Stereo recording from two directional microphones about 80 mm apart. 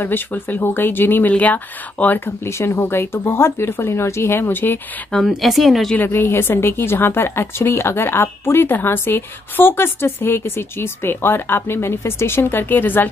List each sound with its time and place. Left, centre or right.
0.0 s a woman's voice: left
5.3 s speech: centre
5.9 s a woman's voice: left